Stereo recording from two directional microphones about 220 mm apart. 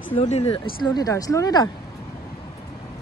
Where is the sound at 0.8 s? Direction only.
15° left (ahead or behind).